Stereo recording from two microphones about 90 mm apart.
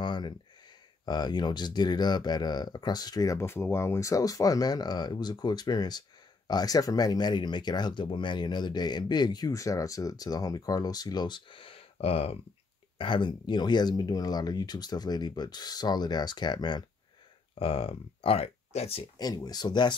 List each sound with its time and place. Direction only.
0.0 s a sound: 60° left (ahead or behind)
1.0 s speech: 50° left (ahead or behind)
3.4 s speech: 25° left (ahead or behind); by 12.4 s 90° left
12.9 s speech: 65° left (ahead or behind)
17.6 s speech: 90° left
19.1 s speech: 45° left (ahead or behind)